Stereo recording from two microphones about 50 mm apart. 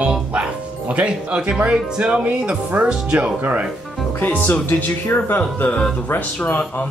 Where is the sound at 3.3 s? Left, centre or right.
Right.